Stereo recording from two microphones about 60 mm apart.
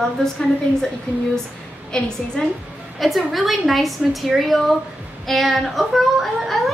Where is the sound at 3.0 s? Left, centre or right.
Centre.